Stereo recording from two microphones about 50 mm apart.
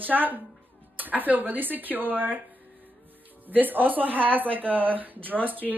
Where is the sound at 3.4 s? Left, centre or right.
Right.